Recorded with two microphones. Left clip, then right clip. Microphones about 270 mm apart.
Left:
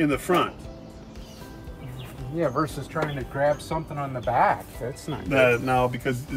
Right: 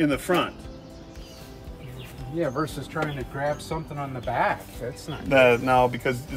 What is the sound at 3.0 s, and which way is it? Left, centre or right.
Speech, centre.